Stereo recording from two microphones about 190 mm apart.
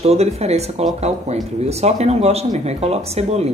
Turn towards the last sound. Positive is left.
turn(degrees=-35)  # may be behind; listen again after turning